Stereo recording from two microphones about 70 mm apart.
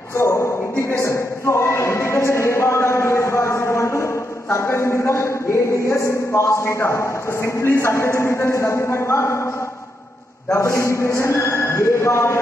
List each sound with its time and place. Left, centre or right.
0.2 s speech: left
10.5 s a man's voice: left